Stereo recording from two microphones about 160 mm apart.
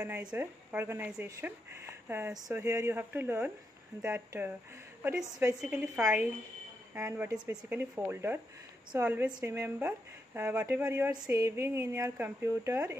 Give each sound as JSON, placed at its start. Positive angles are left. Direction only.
{"t": 0.0, "sound": "speech", "side_deg": -10}
{"t": 5.6, "sound": "speech", "side_deg": -10}